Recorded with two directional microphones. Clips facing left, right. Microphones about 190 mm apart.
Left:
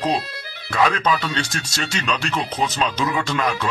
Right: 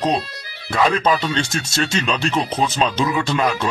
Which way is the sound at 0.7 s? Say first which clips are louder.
Right 2 dB; 30° right (ahead or behind).